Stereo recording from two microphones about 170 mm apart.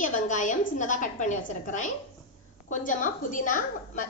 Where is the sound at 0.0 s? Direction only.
45° left (ahead or behind).